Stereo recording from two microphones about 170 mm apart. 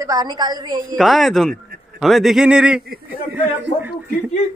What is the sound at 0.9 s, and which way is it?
A man's voice, centre (ahead or behind).